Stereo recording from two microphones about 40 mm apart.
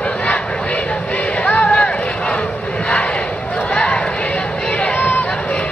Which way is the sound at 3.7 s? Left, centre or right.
Left.